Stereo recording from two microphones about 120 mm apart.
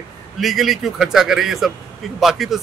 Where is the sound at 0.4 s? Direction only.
Centre (ahead or behind).